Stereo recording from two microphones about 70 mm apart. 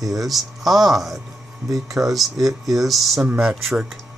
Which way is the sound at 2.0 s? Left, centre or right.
Centre.